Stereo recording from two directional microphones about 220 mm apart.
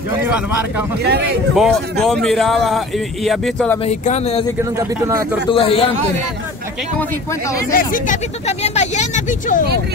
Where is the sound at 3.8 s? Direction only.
30° left (ahead or behind).